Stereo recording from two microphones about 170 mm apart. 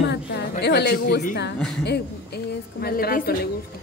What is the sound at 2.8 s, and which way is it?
Speech, 60° left (ahead or behind).